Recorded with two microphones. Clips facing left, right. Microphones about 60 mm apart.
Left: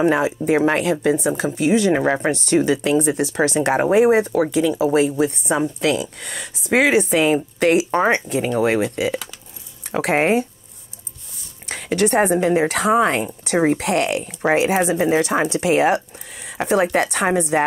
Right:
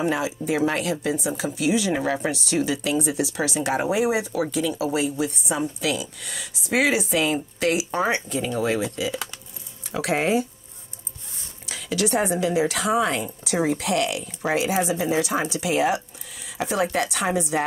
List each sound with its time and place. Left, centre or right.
0.0 s speech: left
1.0 s speech: left
2.3 s speech: left
11.6 s speech: left